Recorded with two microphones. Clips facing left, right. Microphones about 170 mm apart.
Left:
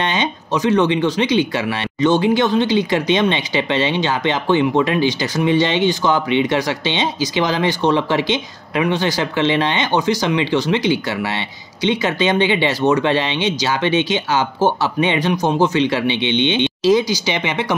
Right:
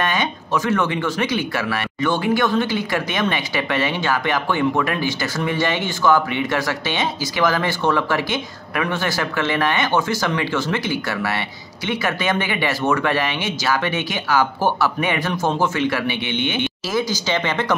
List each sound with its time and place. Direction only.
0.0 s speech: 20° left (ahead or behind)